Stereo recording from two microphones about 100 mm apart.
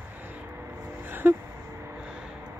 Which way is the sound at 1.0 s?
20° right (ahead or behind).